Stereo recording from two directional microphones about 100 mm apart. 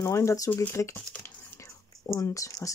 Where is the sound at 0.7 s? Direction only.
25° left (ahead or behind).